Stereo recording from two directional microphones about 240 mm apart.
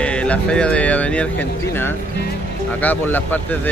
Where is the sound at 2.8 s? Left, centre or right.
Centre.